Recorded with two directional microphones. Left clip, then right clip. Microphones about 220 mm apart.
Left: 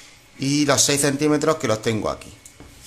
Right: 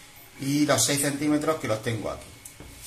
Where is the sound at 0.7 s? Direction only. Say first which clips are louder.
Left 6 dB; 45° left (ahead or behind).